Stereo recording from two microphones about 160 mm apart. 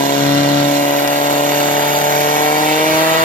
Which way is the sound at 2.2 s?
60° left (ahead or behind).